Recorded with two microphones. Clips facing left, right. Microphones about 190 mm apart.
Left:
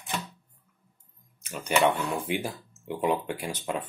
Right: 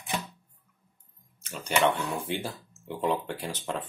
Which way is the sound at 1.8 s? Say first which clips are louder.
Left 1 dB; 10° left (ahead or behind).